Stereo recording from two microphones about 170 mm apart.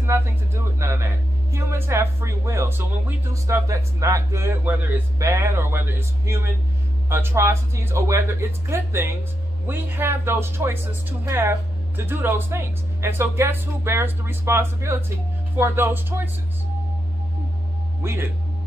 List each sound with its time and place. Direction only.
0.0 s speech: 15° right (ahead or behind)
18.0 s speech: 15° right (ahead or behind)